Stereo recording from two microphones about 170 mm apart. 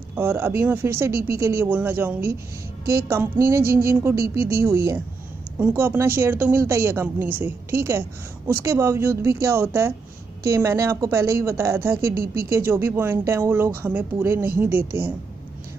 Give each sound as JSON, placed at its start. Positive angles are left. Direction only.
{"t": 0.1, "sound": "a woman's voice", "side_deg": -15}
{"t": 2.8, "sound": "speech", "side_deg": -60}
{"t": 3.1, "sound": "a woman's voice", "side_deg": -15}